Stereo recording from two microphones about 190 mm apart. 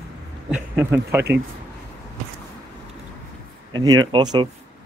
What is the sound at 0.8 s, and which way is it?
Speech, 10° right (ahead or behind).